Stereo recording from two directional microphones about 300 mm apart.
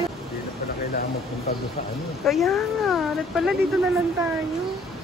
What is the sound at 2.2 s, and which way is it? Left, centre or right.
Speech, centre.